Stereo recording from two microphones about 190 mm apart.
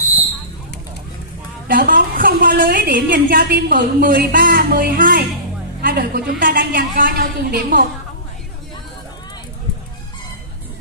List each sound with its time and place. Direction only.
1.7 s a woman's voice: 50° right (ahead or behind)